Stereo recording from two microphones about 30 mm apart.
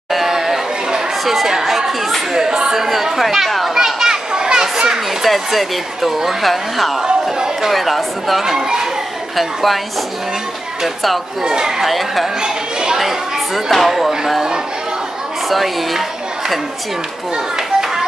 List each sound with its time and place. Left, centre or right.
0.1 s chatter: centre
1.2 s speech: centre
3.7 s children playing: centre
5.2 s speech: centre
8.5 s speech: centre
9.4 s speech: centre
11.4 s speech: right
11.8 s speech: centre
13.7 s speech: centre
15.5 s speech: centre